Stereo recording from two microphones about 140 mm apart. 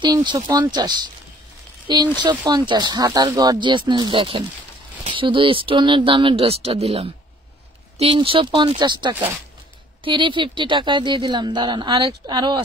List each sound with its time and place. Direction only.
0.0 s speech: 35° right (ahead or behind)